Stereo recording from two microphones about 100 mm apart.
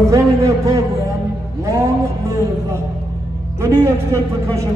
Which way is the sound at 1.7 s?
35° right (ahead or behind).